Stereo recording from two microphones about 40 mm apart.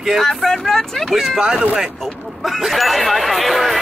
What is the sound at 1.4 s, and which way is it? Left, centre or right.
Speech, centre.